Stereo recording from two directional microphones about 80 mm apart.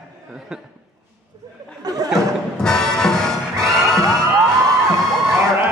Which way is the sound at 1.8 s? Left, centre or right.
Right.